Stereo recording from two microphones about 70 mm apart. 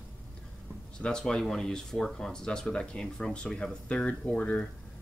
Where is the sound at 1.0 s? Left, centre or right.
Centre.